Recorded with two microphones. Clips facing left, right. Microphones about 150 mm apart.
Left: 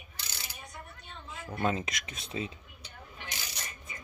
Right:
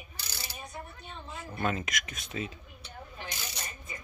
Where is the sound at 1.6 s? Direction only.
25° left (ahead or behind).